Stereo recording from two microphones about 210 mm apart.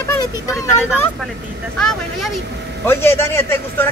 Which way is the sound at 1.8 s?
Centre (ahead or behind).